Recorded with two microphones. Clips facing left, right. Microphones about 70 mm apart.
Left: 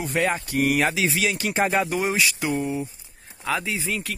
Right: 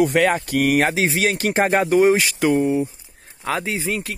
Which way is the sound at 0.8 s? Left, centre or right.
Right.